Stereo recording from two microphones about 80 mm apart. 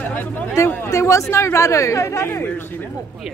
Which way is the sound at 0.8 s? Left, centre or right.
Left.